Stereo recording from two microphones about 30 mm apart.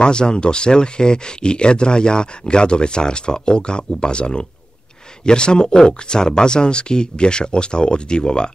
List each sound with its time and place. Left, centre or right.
0.0 s speech: left